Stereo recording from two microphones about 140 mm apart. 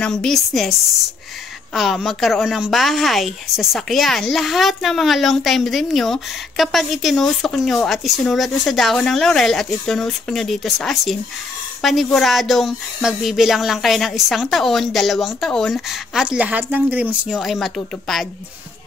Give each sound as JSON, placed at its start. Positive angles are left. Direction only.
{"t": 0.0, "sound": "a woman's voice", "side_deg": 5}